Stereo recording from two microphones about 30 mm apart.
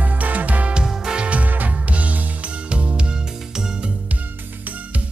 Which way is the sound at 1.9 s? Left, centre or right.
Right.